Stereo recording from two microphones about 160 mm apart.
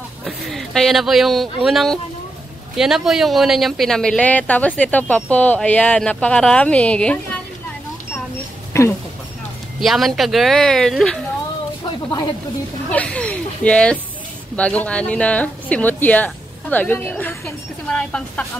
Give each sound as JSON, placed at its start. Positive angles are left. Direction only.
{"t": 0.5, "sound": "speech", "side_deg": 0}
{"t": 8.7, "sound": "speech", "side_deg": 15}
{"t": 9.8, "sound": "speech", "side_deg": 0}
{"t": 12.9, "sound": "speech", "side_deg": 10}